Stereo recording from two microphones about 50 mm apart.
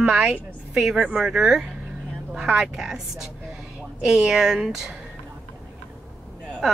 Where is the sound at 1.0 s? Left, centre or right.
Centre.